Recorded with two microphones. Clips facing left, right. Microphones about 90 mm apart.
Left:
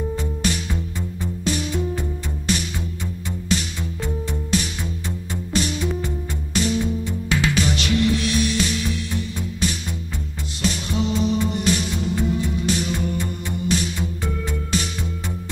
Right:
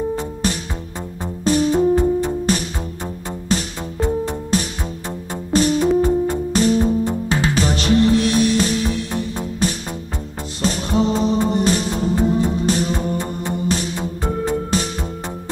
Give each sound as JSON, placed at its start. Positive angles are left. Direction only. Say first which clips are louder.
{"t": 0.1, "sound": "music", "louder": "right 3 dB", "side_deg": -35}